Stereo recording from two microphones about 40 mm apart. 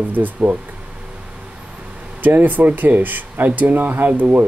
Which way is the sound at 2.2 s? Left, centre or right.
Right.